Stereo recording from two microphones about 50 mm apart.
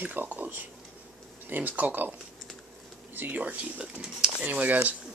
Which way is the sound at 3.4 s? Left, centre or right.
Right.